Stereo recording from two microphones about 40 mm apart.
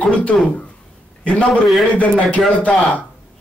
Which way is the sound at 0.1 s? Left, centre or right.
Left.